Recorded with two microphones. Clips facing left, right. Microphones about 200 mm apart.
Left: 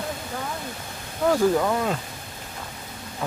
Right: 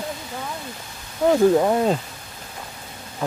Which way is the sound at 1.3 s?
25° right (ahead or behind).